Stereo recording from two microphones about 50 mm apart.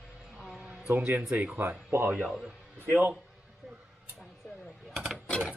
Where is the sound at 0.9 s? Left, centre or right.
Right.